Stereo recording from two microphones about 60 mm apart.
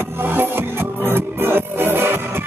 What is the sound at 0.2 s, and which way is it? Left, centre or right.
Music, right.